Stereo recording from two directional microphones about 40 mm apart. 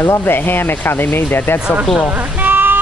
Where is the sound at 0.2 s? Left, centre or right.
Left.